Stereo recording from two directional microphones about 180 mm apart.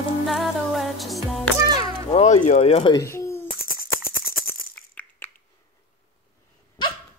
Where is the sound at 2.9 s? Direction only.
15° left (ahead or behind).